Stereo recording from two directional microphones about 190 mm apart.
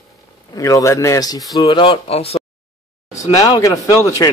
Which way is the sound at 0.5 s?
15° left (ahead or behind).